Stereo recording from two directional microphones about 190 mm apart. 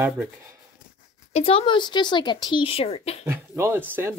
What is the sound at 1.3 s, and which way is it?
Speech, 30° left (ahead or behind).